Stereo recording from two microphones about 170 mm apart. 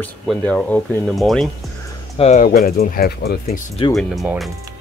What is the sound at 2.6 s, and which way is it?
Speech, 60° left (ahead or behind).